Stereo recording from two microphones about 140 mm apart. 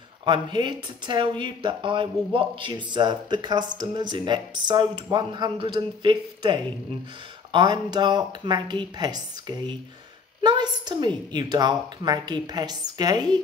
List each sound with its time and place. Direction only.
0.2 s a woman's voice: 35° right (ahead or behind)